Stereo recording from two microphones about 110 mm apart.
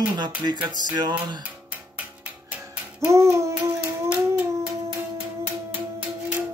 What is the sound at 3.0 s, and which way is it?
Child singing, 25° right (ahead or behind).